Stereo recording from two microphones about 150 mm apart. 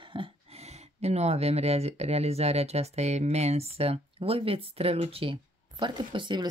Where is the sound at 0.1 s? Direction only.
40° right (ahead or behind).